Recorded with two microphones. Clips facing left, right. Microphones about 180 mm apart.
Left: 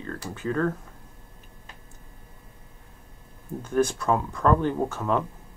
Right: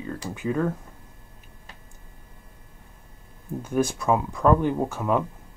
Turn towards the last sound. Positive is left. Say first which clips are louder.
# right 1 dB
turn(degrees=-10)  # may be behind; listen again after turning